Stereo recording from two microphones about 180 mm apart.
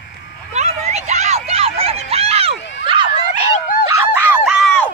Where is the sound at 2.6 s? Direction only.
75° left (ahead or behind).